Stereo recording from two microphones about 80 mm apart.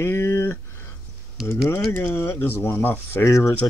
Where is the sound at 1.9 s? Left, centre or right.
Left.